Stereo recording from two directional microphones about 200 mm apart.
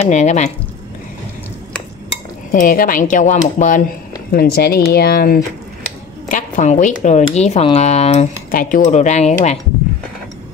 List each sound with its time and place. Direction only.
0.0 s speech: 35° left (ahead or behind)
2.5 s speech: 45° left (ahead or behind)
4.3 s speech: 50° left (ahead or behind); by 9.6 s 35° left (ahead or behind)